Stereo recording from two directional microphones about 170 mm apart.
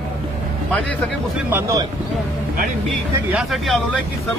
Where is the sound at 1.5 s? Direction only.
20° right (ahead or behind).